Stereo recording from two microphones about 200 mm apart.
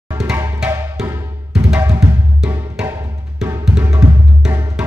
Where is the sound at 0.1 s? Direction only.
15° right (ahead or behind).